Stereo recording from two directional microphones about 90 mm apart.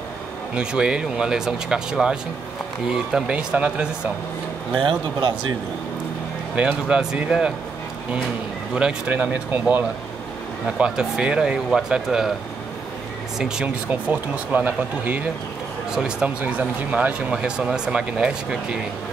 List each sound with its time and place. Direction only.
0.6 s speech: 10° right (ahead or behind)
4.7 s speech: 65° right (ahead or behind)
6.5 s speech: 10° right (ahead or behind)
8.7 s speech: 10° right (ahead or behind)
10.8 s speech: 10° right (ahead or behind)
13.4 s speech: 10° right (ahead or behind)